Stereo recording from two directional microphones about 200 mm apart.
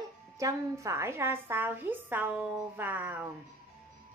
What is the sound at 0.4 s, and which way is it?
A woman's voice, 15° right (ahead or behind).